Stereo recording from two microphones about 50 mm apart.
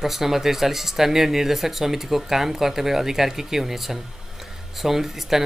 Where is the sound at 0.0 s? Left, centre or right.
Centre.